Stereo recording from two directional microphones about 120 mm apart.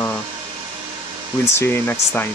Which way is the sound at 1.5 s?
20° left (ahead or behind).